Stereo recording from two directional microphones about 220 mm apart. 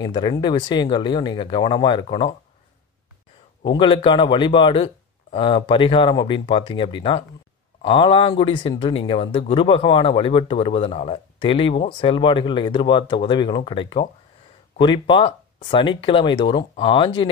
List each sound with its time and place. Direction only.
0.0 s speech: 20° left (ahead or behind)
3.6 s speech: 20° left (ahead or behind)